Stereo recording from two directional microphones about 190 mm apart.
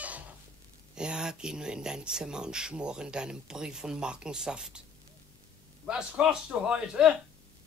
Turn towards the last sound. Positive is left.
turn(degrees=-5)  # may be behind; listen again after turning